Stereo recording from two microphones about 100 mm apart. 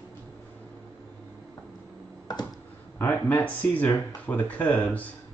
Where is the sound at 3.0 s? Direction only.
20° left (ahead or behind).